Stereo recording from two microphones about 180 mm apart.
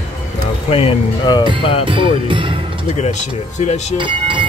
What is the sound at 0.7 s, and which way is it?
Speech, 30° left (ahead or behind).